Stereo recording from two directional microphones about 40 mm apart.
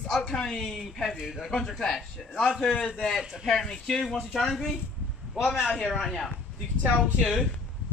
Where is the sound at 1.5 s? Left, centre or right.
Centre.